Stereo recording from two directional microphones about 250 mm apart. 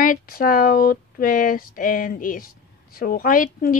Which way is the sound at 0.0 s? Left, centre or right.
Left.